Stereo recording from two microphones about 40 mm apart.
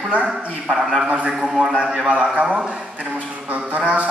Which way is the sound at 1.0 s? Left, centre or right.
Right.